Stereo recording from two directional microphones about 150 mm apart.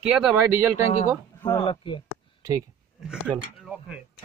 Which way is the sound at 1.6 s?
35° left (ahead or behind).